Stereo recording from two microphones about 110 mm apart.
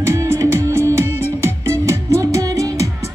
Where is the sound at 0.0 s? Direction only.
25° right (ahead or behind).